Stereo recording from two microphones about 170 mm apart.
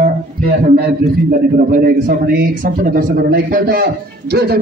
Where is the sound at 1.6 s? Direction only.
55° right (ahead or behind).